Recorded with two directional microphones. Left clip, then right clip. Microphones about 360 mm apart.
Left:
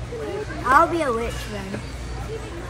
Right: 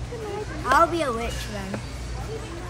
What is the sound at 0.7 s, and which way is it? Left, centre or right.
Speech, centre.